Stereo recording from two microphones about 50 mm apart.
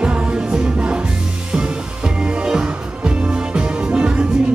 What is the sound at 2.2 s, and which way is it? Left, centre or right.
Music, centre.